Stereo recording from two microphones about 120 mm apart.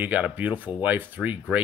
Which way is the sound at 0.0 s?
15° right (ahead or behind).